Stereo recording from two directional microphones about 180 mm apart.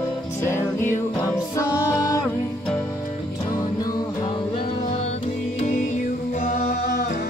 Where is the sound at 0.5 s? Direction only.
15° left (ahead or behind).